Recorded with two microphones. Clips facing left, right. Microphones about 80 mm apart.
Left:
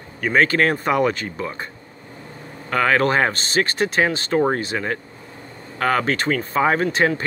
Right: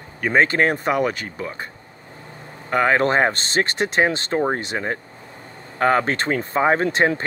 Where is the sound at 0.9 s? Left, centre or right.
Centre.